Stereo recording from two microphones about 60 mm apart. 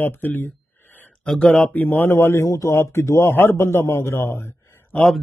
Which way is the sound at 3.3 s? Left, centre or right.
Left.